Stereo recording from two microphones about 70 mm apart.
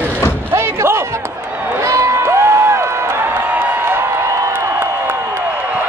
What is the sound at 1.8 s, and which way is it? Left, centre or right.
Music, right.